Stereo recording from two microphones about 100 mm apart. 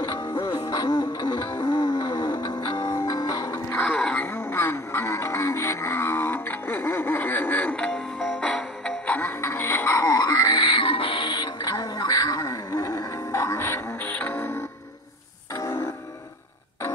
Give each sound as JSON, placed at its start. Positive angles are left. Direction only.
{"t": 0.2, "sound": "music", "side_deg": 25}
{"t": 0.5, "sound": "music", "side_deg": 40}
{"t": 1.5, "sound": "music", "side_deg": 25}
{"t": 3.1, "sound": "music", "side_deg": 40}
{"t": 3.7, "sound": "a sound", "side_deg": 10}
{"t": 4.3, "sound": "music", "side_deg": 25}
{"t": 10.5, "sound": "music", "side_deg": 55}